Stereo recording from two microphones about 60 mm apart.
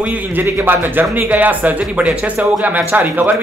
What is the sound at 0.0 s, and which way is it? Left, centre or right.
Speech, right.